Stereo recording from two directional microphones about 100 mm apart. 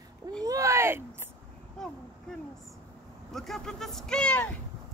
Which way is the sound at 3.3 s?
5° left (ahead or behind).